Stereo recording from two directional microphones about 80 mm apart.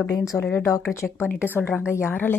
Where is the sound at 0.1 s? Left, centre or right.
Left.